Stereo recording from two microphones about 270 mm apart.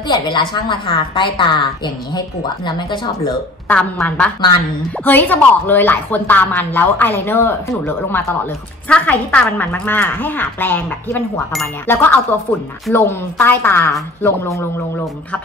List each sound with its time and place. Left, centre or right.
0.1 s speech: centre
3.6 s a woman's voice: centre